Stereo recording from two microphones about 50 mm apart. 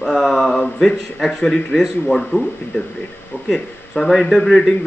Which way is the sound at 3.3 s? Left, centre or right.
Left.